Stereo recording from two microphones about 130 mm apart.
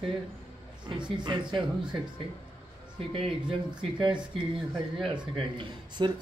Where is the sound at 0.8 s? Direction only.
35° right (ahead or behind).